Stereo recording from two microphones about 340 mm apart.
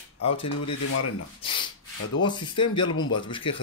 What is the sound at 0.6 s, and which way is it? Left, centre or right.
Speech, left.